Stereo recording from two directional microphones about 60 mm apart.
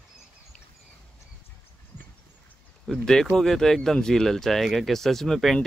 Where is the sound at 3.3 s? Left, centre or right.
Centre.